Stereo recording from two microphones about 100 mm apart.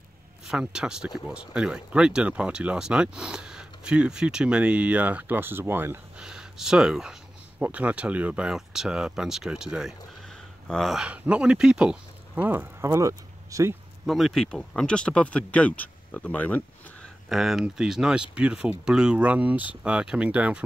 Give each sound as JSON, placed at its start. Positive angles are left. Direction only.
{"t": 0.5, "sound": "speech", "side_deg": -5}
{"t": 6.1, "sound": "speech", "side_deg": -5}
{"t": 11.1, "sound": "speech", "side_deg": -10}
{"t": 12.8, "sound": "speech", "side_deg": -30}
{"t": 14.0, "sound": "speech", "side_deg": 0}
{"t": 17.3, "sound": "speech", "side_deg": 0}